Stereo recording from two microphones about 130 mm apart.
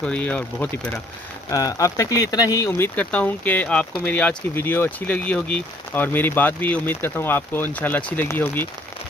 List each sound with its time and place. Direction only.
0.0 s speech: 10° left (ahead or behind)
1.5 s speech: 25° left (ahead or behind)
3.0 s speech: 10° left (ahead or behind)